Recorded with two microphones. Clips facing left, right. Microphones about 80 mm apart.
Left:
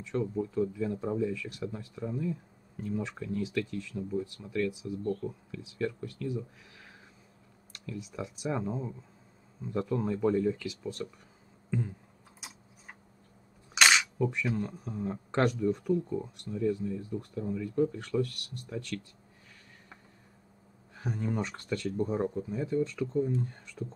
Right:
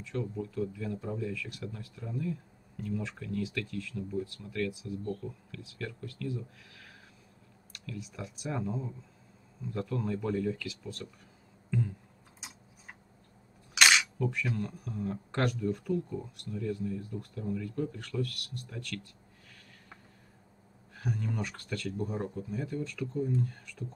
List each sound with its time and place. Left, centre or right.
0.1 s speech: left
14.1 s speech: left
20.9 s speech: left